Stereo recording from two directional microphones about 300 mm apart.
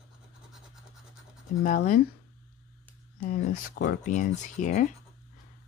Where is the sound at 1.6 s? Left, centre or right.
Left.